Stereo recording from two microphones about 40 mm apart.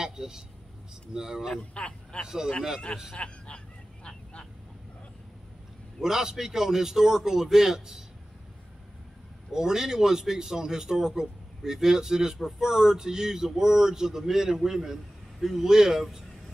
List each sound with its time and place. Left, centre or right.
0.0 s a sound: centre
1.1 s a man's voice: centre
1.6 s a man's voice: left
2.2 s a man's voice: centre
3.2 s vehicle: left
5.9 s a man's voice: centre
9.5 s a man's voice: centre